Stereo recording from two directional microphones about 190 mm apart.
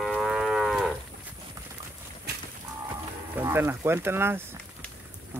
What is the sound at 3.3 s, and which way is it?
Speech, 10° right (ahead or behind).